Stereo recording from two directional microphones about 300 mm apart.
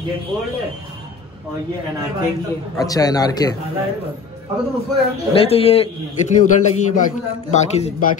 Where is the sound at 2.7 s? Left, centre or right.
Centre.